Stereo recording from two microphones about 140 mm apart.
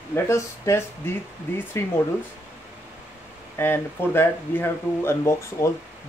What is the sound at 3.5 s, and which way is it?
Speech, 15° left (ahead or behind).